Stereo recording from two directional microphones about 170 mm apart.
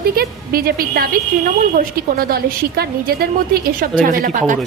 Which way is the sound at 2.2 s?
65° right (ahead or behind).